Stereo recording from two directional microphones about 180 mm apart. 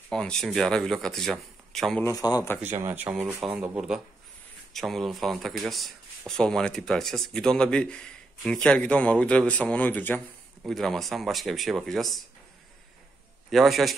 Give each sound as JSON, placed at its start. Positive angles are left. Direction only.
{"t": 0.1, "sound": "speech", "side_deg": 5}
{"t": 2.0, "sound": "speech", "side_deg": 20}
{"t": 2.6, "sound": "speech", "side_deg": -10}
{"t": 13.5, "sound": "speech", "side_deg": 0}